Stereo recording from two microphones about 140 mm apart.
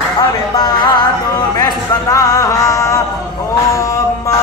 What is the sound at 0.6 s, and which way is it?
Music, 30° left (ahead or behind).